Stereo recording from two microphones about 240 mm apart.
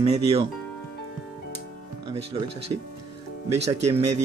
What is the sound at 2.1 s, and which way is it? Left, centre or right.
Speech, right.